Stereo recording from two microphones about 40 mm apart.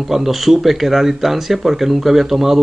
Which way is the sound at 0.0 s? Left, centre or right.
Centre.